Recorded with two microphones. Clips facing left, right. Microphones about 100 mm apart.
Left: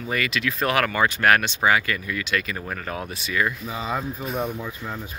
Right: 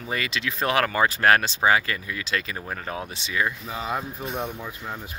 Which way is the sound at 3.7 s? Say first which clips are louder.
Left 2 dB; centre (ahead or behind).